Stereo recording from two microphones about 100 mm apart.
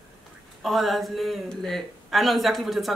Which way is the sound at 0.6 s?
Centre (ahead or behind).